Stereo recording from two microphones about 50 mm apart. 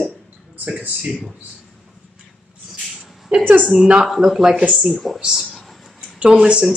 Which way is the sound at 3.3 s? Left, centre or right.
Right.